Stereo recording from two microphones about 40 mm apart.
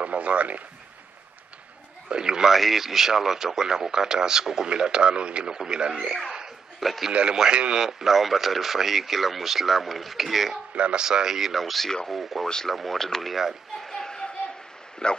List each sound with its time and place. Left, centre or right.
0.0 s speech: right
2.0 s speech: centre
2.5 s a man's voice: centre; by 6.1 s right
6.8 s a man's voice: centre
7.1 s speech: right
7.7 s speech: centre
10.7 s speech: right
11.0 s a man's voice: centre
11.5 s speech: centre
13.8 s a sound: centre
15.0 s speech: left